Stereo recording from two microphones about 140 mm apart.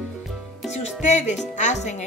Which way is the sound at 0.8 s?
55° left (ahead or behind).